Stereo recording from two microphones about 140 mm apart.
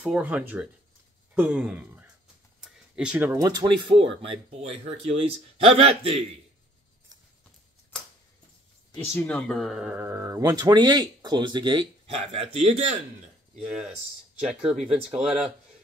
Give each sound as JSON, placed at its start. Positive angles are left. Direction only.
{"t": 0.0, "sound": "speech", "side_deg": -10}
{"t": 2.6, "sound": "a sound", "side_deg": -5}
{"t": 3.3, "sound": "speech", "side_deg": -30}
{"t": 8.9, "sound": "speech", "side_deg": 15}
{"t": 9.9, "sound": "speech", "side_deg": -20}
{"t": 12.2, "sound": "speech", "side_deg": -45}
{"t": 14.6, "sound": "speech", "side_deg": -5}